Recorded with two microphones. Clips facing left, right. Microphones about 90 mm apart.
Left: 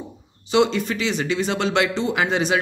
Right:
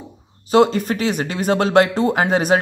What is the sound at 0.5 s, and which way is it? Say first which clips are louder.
Speech: right 4 dB; 45° right (ahead or behind).